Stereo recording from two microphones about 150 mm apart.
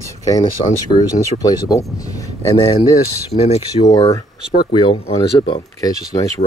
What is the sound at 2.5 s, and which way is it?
Speech, 35° left (ahead or behind).